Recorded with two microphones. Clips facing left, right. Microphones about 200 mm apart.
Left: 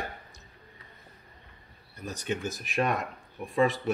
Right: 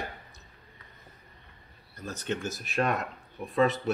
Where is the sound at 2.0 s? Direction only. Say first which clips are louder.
Even; 15° left (ahead or behind).